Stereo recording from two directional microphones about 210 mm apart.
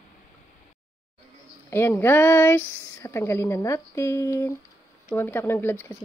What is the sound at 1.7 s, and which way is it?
Speech, 10° left (ahead or behind).